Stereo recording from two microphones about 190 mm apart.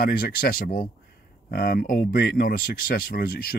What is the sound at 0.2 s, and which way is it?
Speech, 50° left (ahead or behind).